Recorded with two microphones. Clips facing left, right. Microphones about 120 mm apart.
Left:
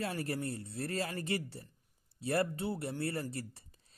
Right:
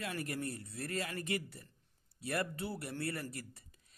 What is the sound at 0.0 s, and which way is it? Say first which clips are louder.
Speech: left 3 dB; 30° left (ahead or behind).